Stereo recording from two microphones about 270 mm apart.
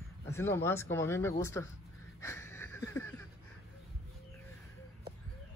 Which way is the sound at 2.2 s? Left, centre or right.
Centre.